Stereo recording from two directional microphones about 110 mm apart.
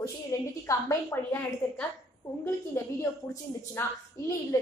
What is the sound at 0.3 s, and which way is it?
A woman's voice, 25° left (ahead or behind).